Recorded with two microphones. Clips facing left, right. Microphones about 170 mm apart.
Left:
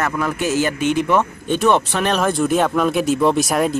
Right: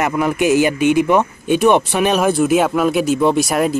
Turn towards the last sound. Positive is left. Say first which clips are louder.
# right 1 dB
turn(degrees=0)  # may be behind; listen again after turning